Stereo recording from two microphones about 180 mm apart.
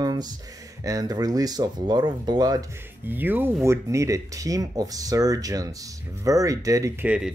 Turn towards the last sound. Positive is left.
turn(degrees=-5)  # may be behind; listen again after turning